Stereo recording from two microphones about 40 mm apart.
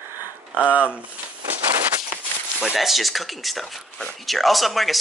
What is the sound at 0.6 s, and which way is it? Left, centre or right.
Speech, right.